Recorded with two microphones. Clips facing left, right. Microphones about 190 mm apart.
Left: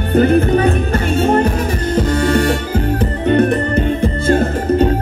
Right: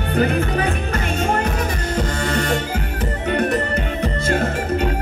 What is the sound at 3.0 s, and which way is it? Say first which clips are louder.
Music: left 7 dB; 35° left (ahead or behind).